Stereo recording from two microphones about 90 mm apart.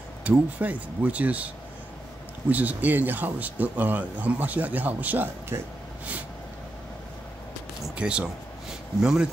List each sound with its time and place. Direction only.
0.2 s speech: 15° right (ahead or behind)
2.5 s speech: 20° right (ahead or behind)
7.9 s speech: 10° right (ahead or behind)